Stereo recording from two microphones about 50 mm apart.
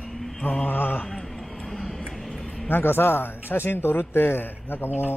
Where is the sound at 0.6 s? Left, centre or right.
Left.